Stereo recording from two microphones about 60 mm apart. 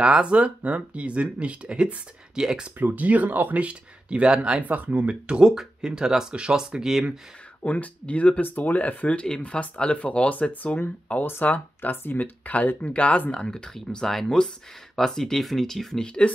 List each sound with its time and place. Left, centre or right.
0.0 s speech: centre
2.8 s speech: right; by 7.2 s centre
7.6 s speech: left; by 16.1 s centre